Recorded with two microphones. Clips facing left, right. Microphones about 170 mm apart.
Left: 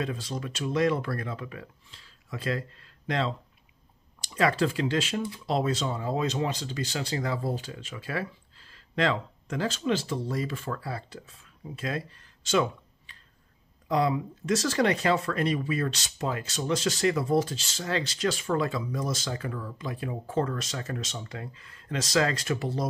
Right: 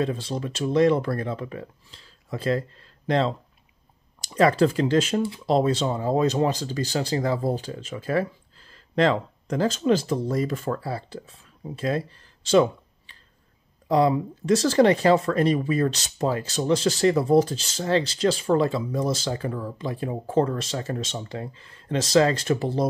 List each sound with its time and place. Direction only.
0.0 s speech: 35° right (ahead or behind)